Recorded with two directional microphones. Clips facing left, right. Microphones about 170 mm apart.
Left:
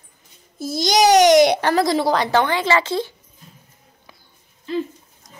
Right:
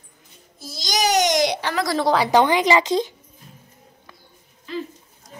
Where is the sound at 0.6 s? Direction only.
55° left (ahead or behind).